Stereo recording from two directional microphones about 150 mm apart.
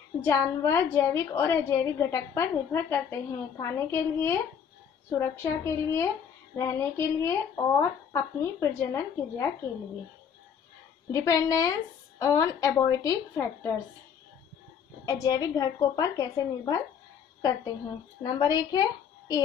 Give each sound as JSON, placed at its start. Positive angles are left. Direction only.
{"t": 0.2, "sound": "a woman's voice", "side_deg": 20}
{"t": 11.1, "sound": "a woman's voice", "side_deg": 20}
{"t": 15.0, "sound": "a woman's voice", "side_deg": 25}
{"t": 18.2, "sound": "a woman's voice", "side_deg": 30}